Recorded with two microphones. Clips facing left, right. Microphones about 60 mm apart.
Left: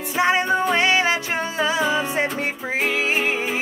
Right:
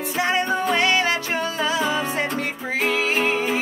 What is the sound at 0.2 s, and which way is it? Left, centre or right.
Music, centre.